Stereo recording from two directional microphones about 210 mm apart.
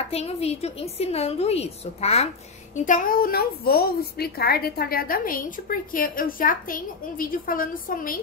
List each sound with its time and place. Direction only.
0.1 s a woman's voice: 30° left (ahead or behind)